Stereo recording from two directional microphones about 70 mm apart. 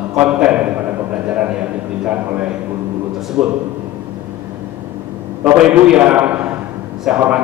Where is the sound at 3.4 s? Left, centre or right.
Centre.